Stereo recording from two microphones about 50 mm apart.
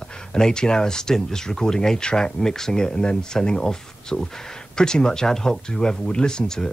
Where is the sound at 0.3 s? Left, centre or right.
Centre.